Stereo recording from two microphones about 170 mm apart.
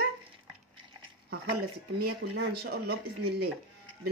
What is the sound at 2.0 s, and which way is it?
Speech, 70° right (ahead or behind).